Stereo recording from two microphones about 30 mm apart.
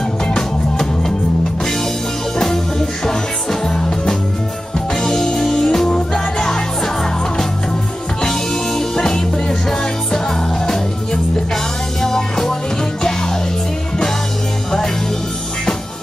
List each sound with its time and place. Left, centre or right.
0.3 s music: centre
2.3 s music: centre
5.9 s music: left
6.8 s music: centre